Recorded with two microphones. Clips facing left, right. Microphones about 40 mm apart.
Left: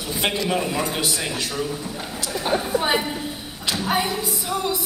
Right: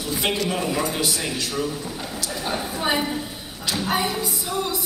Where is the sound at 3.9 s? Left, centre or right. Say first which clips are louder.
Left 1 dB; left.